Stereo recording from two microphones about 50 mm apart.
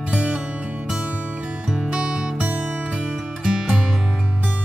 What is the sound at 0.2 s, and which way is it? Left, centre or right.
Music, right.